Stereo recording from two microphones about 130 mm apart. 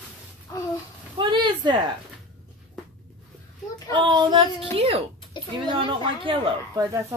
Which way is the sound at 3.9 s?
35° right (ahead or behind).